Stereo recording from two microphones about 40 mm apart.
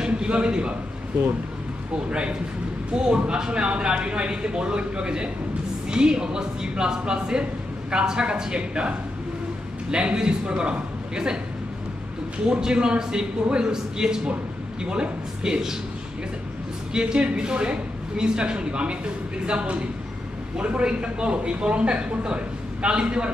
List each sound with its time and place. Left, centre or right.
0.0 s a man's voice: right
2.0 s speech: right
12.4 s speech: right
16.9 s speech: right